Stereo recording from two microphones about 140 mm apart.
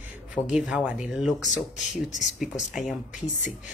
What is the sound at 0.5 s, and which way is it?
Speech, 5° right (ahead or behind).